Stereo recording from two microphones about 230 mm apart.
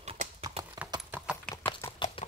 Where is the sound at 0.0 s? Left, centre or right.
Right.